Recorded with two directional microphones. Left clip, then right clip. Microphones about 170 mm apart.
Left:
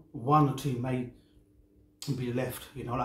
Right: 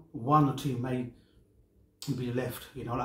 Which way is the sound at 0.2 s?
10° left (ahead or behind).